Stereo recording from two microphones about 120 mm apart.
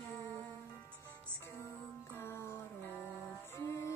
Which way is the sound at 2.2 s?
20° left (ahead or behind).